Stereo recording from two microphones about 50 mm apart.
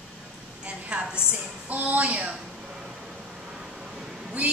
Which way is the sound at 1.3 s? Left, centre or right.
Right.